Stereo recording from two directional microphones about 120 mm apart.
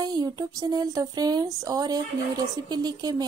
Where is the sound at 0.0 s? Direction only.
35° right (ahead or behind).